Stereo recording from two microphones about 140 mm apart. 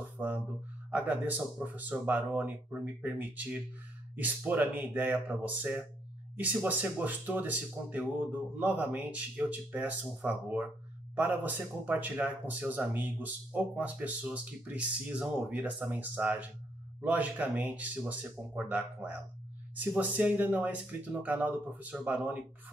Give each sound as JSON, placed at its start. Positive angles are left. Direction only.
{"t": 0.2, "sound": "a man's voice", "side_deg": -15}